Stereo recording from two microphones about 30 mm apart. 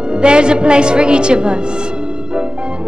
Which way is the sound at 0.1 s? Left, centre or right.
Right.